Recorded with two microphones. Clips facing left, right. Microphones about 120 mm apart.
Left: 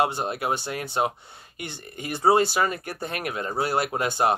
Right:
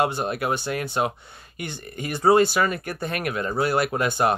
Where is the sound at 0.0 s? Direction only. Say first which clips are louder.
Right 1 dB; 25° left (ahead or behind).